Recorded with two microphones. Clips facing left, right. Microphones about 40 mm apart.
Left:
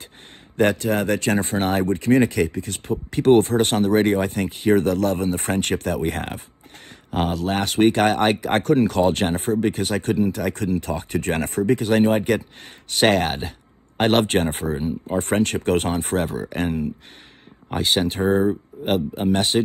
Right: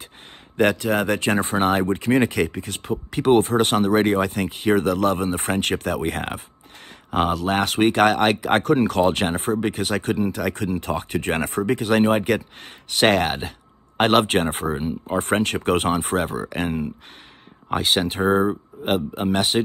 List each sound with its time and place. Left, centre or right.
0.6 s speech: right
13.0 s speech: right
13.4 s speech: right
15.1 s speech: right
18.5 s speech: right
19.1 s speech: right